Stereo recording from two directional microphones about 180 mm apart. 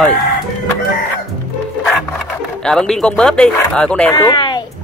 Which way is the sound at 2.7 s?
5° left (ahead or behind).